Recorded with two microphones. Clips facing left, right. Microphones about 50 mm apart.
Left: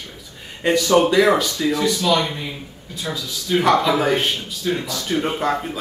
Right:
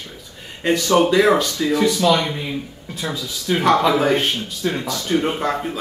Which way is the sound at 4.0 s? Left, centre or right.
Centre.